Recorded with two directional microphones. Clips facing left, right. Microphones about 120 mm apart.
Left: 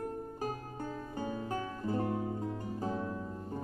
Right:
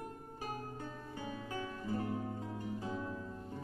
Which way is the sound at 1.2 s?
45° left (ahead or behind).